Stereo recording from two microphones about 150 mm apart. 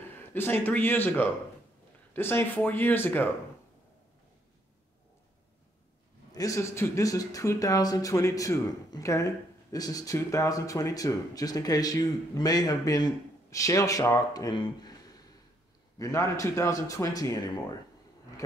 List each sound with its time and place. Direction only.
0.3 s speech: 15° left (ahead or behind)
6.3 s speech: 20° left (ahead or behind)